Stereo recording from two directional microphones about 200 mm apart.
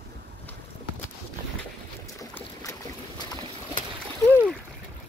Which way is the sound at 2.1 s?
15° left (ahead or behind).